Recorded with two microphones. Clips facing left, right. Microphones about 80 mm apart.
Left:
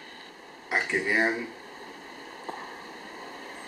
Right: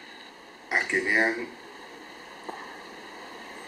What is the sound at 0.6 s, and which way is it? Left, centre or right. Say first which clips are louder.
Speech: right 1 dB; centre.